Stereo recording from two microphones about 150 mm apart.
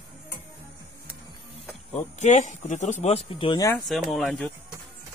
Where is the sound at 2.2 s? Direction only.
50° left (ahead or behind); by 3.8 s 25° left (ahead or behind).